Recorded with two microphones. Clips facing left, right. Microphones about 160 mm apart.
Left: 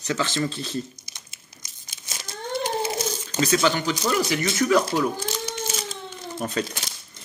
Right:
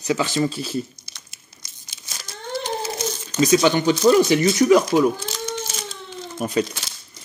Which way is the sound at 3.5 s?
20° right (ahead or behind).